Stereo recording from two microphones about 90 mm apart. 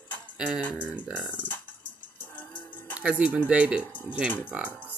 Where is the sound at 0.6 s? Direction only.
15° left (ahead or behind).